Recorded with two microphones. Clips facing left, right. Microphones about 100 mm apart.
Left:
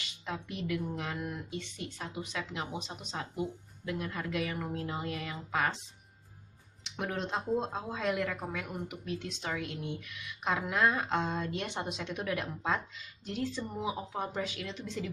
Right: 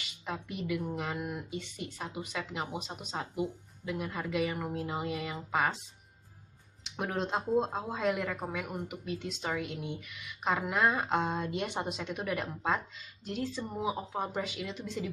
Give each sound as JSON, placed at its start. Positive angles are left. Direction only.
{"t": 0.0, "sound": "speech", "side_deg": -5}
{"t": 7.0, "sound": "a woman's voice", "side_deg": -10}